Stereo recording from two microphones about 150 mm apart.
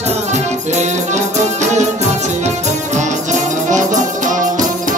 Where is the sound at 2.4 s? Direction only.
50° right (ahead or behind).